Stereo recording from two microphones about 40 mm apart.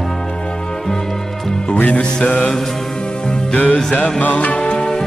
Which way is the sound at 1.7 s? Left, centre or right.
Left.